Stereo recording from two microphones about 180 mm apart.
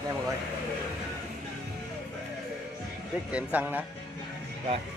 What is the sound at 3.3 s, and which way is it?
Speech, 10° right (ahead or behind).